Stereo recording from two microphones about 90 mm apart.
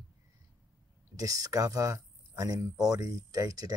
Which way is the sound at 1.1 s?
40° right (ahead or behind).